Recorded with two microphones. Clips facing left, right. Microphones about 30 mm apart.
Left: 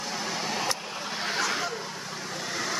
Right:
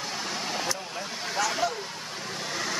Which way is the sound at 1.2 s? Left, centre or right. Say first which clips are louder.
Even; left.